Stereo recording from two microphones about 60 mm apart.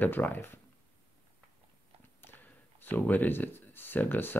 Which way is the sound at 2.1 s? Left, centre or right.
Left.